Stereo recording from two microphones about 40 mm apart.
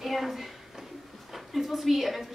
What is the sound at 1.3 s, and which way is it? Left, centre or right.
Speech, centre.